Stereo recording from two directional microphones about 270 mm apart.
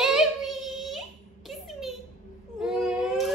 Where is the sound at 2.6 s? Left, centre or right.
Centre.